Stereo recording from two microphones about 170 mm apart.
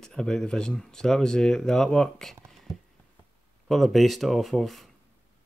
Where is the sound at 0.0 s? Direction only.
5° left (ahead or behind).